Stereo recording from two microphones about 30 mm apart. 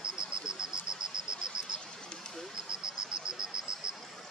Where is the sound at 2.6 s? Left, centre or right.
Right.